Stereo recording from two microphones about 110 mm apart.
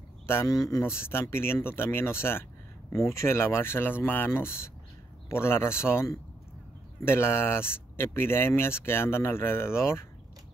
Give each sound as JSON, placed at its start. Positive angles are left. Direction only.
{"t": 0.3, "sound": "speech", "side_deg": 25}